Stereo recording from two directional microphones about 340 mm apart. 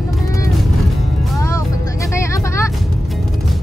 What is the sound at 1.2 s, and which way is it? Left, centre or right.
Music, centre.